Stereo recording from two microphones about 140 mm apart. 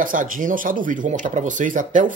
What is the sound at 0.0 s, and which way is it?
Speech, 75° right (ahead or behind).